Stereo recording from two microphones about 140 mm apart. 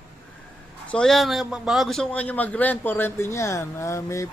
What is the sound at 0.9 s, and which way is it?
A man's voice, centre (ahead or behind).